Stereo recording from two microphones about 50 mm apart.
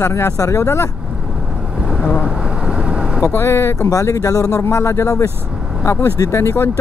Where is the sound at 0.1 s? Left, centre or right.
Left.